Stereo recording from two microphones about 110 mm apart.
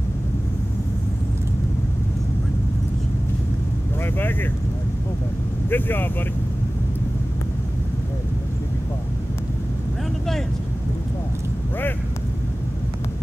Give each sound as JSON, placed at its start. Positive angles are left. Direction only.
{"t": 4.0, "sound": "speech", "side_deg": 20}
{"t": 5.7, "sound": "speech", "side_deg": 20}